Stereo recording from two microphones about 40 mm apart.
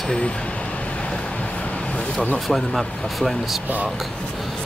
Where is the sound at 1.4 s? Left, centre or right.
Left.